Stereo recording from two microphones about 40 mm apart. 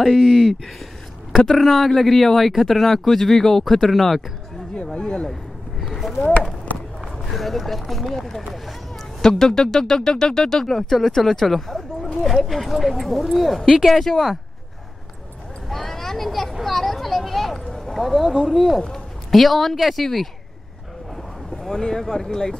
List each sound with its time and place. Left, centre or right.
0.0 s speech: centre
4.9 s speech: left
5.3 s a sound: centre
7.3 s speech: centre
15.7 s speech: centre
17.6 s a sound: centre
17.9 s speech: centre
21.5 s speech: centre